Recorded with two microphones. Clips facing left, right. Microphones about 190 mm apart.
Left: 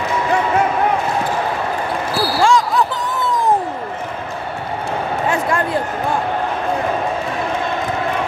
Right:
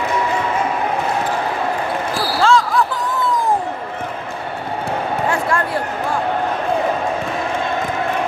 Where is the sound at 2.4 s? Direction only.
15° left (ahead or behind).